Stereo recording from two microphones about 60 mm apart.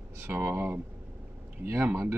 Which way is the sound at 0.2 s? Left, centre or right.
Right.